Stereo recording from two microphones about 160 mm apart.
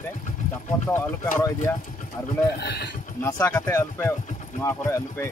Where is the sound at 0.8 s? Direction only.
15° left (ahead or behind).